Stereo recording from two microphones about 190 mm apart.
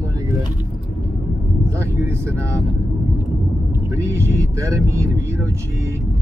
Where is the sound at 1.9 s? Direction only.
15° right (ahead or behind).